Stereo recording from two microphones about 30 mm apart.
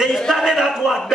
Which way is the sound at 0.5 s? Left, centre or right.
Centre.